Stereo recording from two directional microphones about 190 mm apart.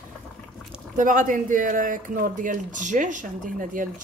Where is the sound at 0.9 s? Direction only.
45° right (ahead or behind).